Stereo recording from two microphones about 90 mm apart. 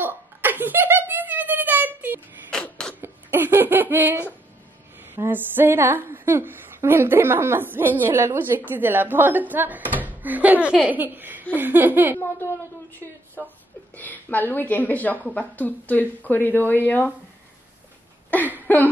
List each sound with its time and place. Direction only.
0.0 s a sound: 20° right (ahead or behind)
2.5 s a sound: 10° left (ahead or behind)
3.0 s laughter: 25° right (ahead or behind)
5.1 s a woman's voice: 25° right (ahead or behind)
12.2 s speech: 25° left (ahead or behind)
13.9 s speech: 20° left (ahead or behind)
18.3 s speech: 20° left (ahead or behind)